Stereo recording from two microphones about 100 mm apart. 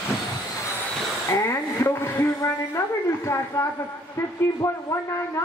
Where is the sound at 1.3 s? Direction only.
30° left (ahead or behind).